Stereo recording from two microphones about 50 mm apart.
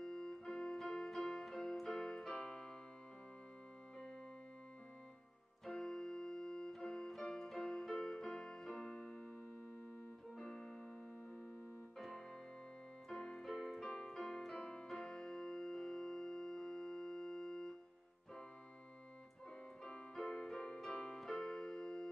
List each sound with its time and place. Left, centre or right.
0.0 s keyboard: centre
5.7 s keyboard: centre
10.4 s keyboard: centre
13.1 s keyboard: centre
14.9 s music: centre
19.8 s keyboard: centre